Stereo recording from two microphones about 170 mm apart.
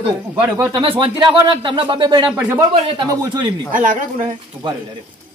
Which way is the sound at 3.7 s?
50° right (ahead or behind).